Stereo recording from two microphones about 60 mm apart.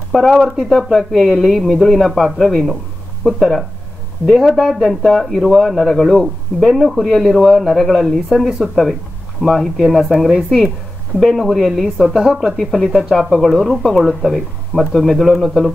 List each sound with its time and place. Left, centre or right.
0.1 s speech: centre
12.1 s a woman's voice: centre
12.4 s speech: centre